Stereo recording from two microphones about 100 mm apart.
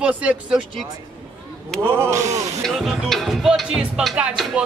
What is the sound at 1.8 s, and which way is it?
Speech, 25° right (ahead or behind).